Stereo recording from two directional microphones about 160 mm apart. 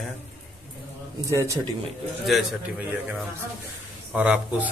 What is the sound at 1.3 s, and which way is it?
Speech, 20° right (ahead or behind).